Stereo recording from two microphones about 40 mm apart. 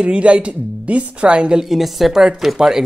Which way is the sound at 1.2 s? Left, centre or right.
Right.